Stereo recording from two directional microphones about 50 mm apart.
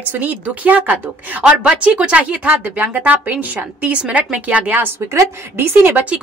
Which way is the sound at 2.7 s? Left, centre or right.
Right.